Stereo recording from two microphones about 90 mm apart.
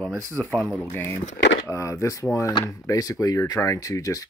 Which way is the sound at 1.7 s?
35° left (ahead or behind).